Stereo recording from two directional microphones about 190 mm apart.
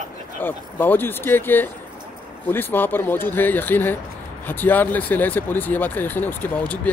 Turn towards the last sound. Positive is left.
turn(degrees=10)  # may be behind; listen again after turning